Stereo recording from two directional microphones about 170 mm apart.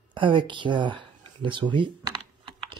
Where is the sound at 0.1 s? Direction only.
30° right (ahead or behind).